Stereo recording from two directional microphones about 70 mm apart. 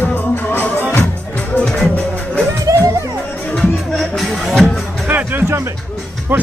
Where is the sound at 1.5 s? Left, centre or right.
Centre.